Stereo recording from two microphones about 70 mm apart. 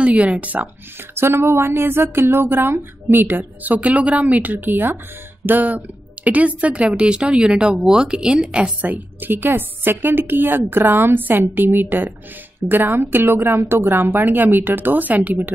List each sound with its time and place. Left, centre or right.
0.0 s speech: centre
1.1 s speech: right